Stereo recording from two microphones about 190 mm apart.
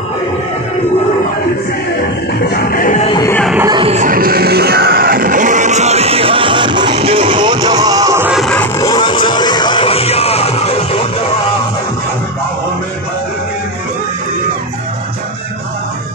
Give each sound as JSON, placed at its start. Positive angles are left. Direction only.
{"t": 2.5, "sound": "music", "side_deg": 50}
{"t": 3.1, "sound": "music", "side_deg": 20}
{"t": 3.7, "sound": "music", "side_deg": -35}
{"t": 8.3, "sound": "music", "side_deg": 0}
{"t": 8.7, "sound": "music", "side_deg": 20}